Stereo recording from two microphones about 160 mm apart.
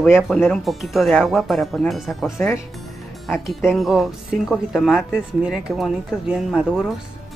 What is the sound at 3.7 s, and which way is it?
Speech, centre (ahead or behind).